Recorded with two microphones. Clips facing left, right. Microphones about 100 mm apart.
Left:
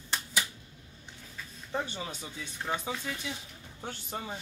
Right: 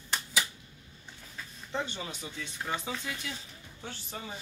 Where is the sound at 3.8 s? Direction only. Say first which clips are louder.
Left 3 dB; 45° left (ahead or behind).